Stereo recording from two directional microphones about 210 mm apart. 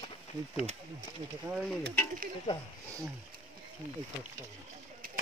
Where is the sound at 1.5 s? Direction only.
5° right (ahead or behind).